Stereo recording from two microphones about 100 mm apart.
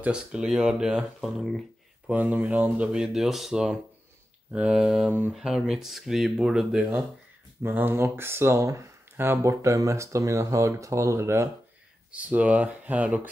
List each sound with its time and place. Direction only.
0.0 s speech: 10° right (ahead or behind)
2.0 s speech: 10° right (ahead or behind)
7.6 s speech: 20° right (ahead or behind)
12.1 s speech: 15° right (ahead or behind)